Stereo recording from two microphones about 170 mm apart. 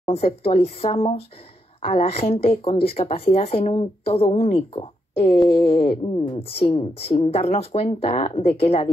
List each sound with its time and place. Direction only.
0.0 s speech: 35° left (ahead or behind)